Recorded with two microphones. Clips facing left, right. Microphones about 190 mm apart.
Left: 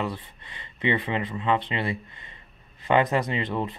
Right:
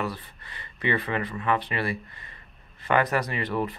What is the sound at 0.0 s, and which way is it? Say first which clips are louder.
Speech: left 1 dB; 20° left (ahead or behind).